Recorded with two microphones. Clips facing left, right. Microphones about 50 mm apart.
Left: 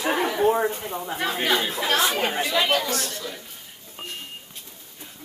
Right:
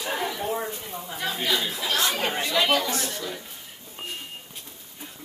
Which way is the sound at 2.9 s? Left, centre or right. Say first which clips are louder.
Left 1 dB; right.